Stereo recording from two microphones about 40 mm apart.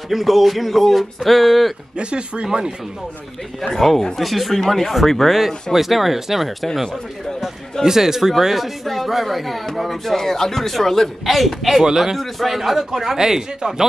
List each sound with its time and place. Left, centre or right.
0.1 s speech: centre
2.0 s speech: right
3.6 s speech: centre
7.8 s a man's voice: centre